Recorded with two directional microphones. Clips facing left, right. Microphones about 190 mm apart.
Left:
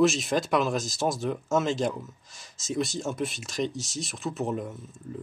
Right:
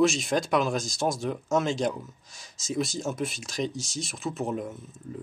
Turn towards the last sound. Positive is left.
turn(degrees=0)  # may be behind; listen again after turning